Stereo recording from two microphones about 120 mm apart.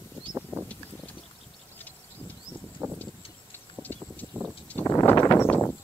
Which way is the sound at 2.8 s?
20° right (ahead or behind).